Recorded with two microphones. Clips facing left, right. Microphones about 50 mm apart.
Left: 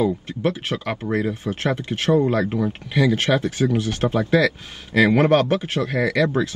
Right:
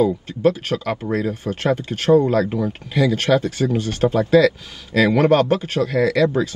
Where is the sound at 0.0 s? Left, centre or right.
Left.